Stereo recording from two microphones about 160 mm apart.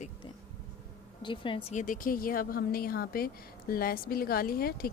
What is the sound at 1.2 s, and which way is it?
Speech, 30° left (ahead or behind).